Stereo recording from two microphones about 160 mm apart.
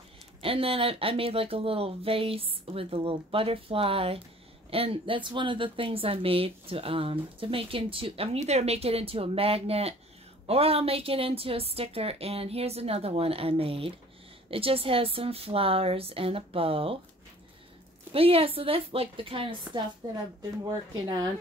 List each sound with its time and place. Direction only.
0.4 s a woman's voice: 35° right (ahead or behind)
18.1 s a woman's voice: 35° right (ahead or behind)